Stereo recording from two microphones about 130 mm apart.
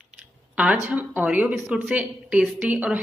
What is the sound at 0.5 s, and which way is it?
A woman's voice, 10° right (ahead or behind).